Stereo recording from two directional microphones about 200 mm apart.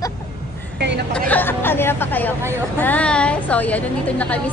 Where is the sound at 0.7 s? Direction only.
55° right (ahead or behind).